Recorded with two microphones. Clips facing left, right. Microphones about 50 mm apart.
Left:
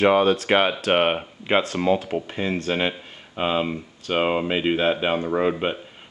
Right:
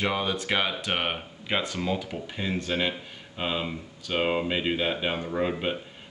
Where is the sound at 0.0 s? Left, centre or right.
Left.